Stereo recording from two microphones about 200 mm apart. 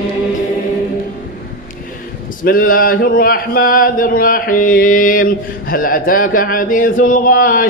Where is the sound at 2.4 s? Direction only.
45° left (ahead or behind).